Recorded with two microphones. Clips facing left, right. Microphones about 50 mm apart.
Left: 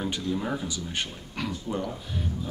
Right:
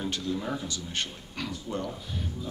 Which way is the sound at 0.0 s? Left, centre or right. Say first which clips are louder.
Left 2 dB; centre.